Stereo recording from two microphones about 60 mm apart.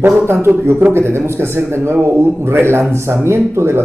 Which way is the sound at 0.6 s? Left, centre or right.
Right.